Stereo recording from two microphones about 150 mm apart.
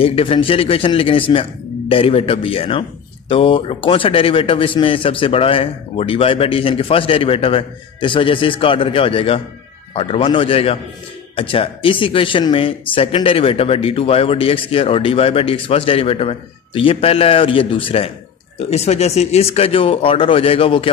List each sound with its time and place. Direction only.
0.0 s speech: 40° left (ahead or behind)